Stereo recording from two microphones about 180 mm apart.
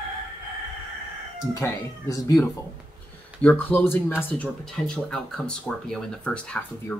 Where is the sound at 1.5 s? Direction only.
20° left (ahead or behind).